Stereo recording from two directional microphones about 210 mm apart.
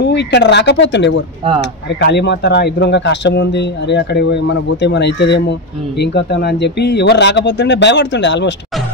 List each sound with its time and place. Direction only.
0.0 s speech: 55° left (ahead or behind)